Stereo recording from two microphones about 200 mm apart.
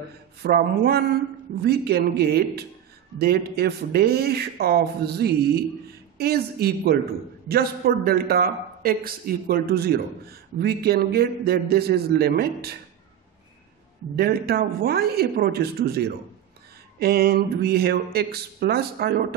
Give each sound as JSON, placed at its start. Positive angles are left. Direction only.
{"t": 0.4, "sound": "a man's voice", "side_deg": -50}
{"t": 14.1, "sound": "a man's voice", "side_deg": -50}